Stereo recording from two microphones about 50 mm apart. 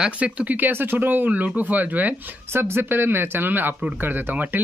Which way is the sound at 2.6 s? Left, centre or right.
Right.